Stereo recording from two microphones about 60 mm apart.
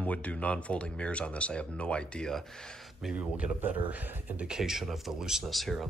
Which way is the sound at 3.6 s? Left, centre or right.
Right.